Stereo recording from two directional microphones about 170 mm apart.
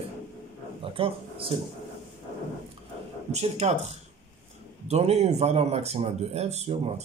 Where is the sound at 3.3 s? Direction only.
40° right (ahead or behind).